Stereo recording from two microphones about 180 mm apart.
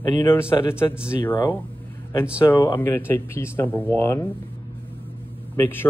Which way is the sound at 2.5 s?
15° left (ahead or behind).